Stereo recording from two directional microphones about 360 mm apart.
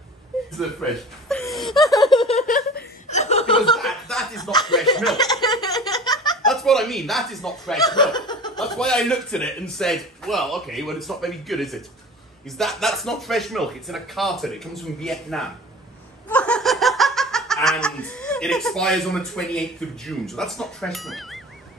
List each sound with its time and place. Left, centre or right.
0.6 s chuckle: centre
2.1 s chuckle: centre
3.7 s chuckle: centre
4.5 s speech: centre
5.1 s a sound: centre
7.9 s laughter: centre
8.5 s a man's voice: centre
16.3 s laughter: centre